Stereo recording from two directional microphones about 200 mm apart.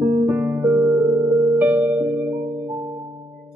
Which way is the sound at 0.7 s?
20° right (ahead or behind).